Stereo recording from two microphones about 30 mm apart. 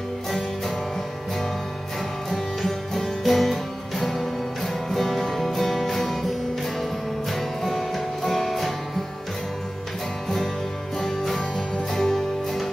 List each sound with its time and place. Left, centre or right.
2.3 s music: centre
11.0 s music: centre